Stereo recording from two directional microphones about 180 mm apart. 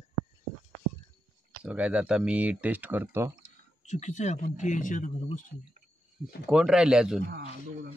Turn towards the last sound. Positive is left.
turn(degrees=-5)  # may be behind; listen again after turning